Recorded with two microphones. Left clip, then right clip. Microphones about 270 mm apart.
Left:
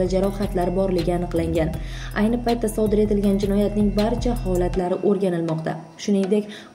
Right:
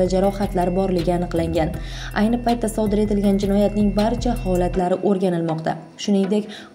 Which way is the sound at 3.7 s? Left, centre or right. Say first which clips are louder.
Right 2 dB; centre.